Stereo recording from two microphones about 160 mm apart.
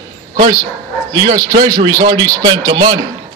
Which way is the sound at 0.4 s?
25° right (ahead or behind).